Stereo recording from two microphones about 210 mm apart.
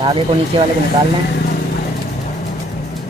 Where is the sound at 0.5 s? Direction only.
20° right (ahead or behind).